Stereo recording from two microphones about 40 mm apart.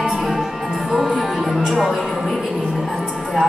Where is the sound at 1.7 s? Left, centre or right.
Centre.